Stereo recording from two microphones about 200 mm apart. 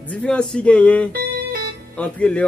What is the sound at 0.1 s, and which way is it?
Speech, 5° left (ahead or behind).